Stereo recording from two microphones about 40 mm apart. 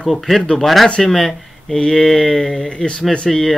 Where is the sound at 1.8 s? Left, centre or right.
Centre.